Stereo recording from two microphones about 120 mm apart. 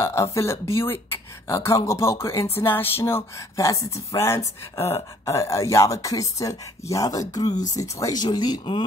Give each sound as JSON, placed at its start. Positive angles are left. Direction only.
{"t": 0.0, "sound": "speech", "side_deg": 25}